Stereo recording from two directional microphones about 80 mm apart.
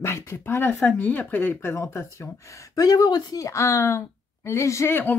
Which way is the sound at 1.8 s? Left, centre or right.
Left.